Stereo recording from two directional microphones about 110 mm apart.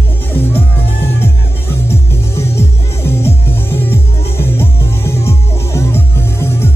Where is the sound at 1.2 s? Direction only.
20° left (ahead or behind).